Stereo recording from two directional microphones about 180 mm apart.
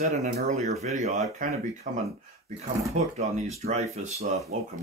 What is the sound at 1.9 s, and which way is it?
Speech, 50° right (ahead or behind).